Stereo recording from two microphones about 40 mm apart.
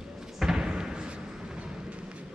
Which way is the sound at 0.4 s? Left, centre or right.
Centre.